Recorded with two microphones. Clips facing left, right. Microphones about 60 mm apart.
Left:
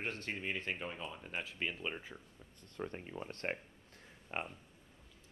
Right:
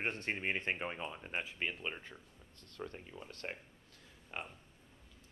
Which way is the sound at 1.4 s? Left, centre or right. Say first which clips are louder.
Even; centre.